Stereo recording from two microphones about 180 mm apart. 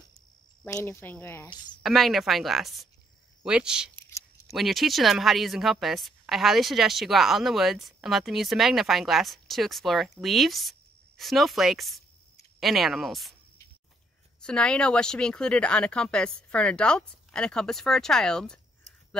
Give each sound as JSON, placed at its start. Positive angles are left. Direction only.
{"t": 0.7, "sound": "speech", "side_deg": 15}
{"t": 1.8, "sound": "a woman's voice", "side_deg": 0}
{"t": 3.9, "sound": "a sound", "side_deg": 15}
{"t": 4.5, "sound": "a woman's voice", "side_deg": 0}
{"t": 14.4, "sound": "a woman's voice", "side_deg": 5}